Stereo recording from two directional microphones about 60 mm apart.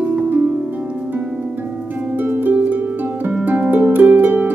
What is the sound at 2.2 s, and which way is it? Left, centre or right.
Harp, right.